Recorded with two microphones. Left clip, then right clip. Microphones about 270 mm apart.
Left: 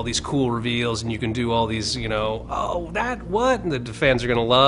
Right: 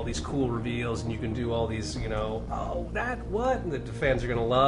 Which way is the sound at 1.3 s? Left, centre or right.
Left.